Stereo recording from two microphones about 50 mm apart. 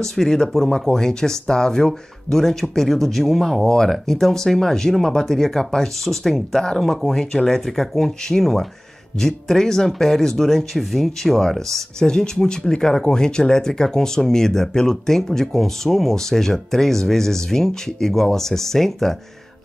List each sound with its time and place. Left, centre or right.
0.0 s speech: centre